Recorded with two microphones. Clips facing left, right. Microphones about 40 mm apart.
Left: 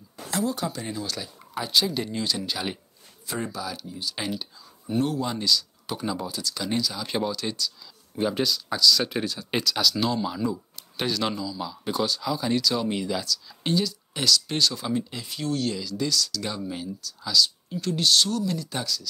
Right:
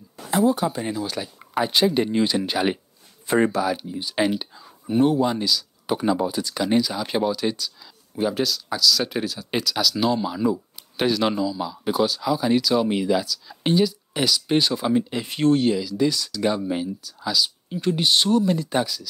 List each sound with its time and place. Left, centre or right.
0.2 s speech: right
1.5 s speech: right
3.3 s speech: right
3.7 s speech: right
5.9 s speech: centre
8.2 s speech: centre; by 11.6 s right
11.6 s speech: centre
15.2 s speech: right
15.8 s speech: centre
16.1 s speech: right